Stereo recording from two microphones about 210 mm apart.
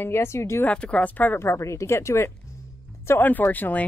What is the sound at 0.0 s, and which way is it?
Speech, 10° left (ahead or behind).